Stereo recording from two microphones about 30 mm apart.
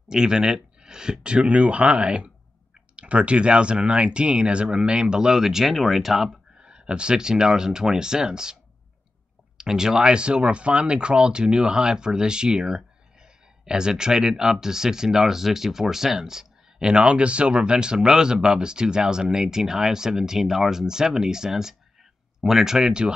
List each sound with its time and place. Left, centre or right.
0.1 s speech: right
1.2 s speech: right
5.1 s speech: right
5.7 s speech: centre
6.6 s speech: right
9.6 s speech: centre
10.1 s speech: right; by 22.9 s centre